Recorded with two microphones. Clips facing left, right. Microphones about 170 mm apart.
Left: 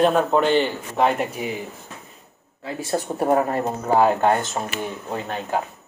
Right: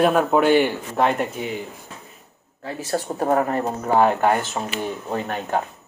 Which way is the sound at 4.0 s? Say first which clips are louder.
Even; 20° left (ahead or behind).